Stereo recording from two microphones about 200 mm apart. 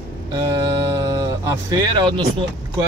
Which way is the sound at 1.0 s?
15° right (ahead or behind).